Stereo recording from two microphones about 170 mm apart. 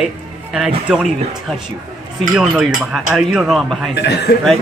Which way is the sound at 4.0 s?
70° left (ahead or behind).